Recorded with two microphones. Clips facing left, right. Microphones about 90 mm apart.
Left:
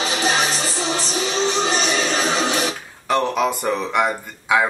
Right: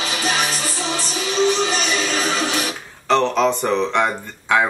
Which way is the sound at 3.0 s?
10° left (ahead or behind).